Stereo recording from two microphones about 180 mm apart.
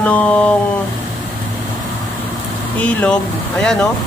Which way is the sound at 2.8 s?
5° left (ahead or behind).